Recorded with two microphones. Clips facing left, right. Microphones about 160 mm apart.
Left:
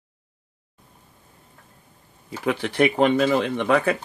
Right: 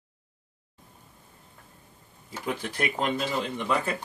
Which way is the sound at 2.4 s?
75° left (ahead or behind).